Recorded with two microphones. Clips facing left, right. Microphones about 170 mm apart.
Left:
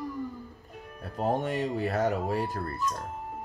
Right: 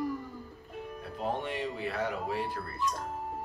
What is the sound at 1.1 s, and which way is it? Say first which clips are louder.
Speech: left 6 dB; 45° left (ahead or behind).